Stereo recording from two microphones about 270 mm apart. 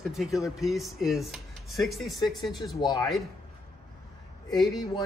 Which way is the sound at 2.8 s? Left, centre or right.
Centre.